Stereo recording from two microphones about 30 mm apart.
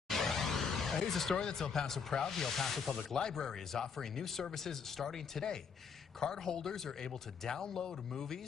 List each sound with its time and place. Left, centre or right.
0.1 s a sound: centre
1.3 s speech: left
1.6 s speech: centre
3.2 s speech: left